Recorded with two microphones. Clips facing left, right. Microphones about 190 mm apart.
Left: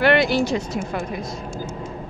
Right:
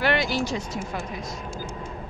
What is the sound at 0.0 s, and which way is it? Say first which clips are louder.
Speech: left 7 dB; 65° left (ahead or behind).